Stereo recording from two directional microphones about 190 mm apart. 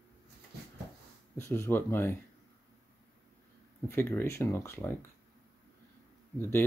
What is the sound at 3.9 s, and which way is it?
Speech, 10° left (ahead or behind).